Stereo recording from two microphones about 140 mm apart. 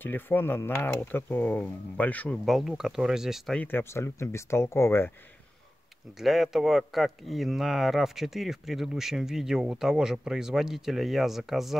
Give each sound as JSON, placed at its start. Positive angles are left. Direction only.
{"t": 0.0, "sound": "speech", "side_deg": 15}
{"t": 2.4, "sound": "speech", "side_deg": 0}
{"t": 3.6, "sound": "speech", "side_deg": 15}
{"t": 6.1, "sound": "speech", "side_deg": 0}